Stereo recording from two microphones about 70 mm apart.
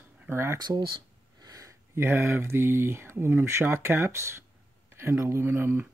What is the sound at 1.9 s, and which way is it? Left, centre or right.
Speech, right.